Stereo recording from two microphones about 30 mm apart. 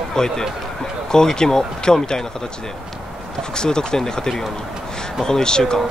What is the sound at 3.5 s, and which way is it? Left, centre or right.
Speech, left.